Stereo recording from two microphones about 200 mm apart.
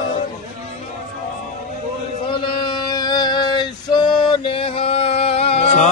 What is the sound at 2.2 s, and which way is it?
Male singing, 25° left (ahead or behind).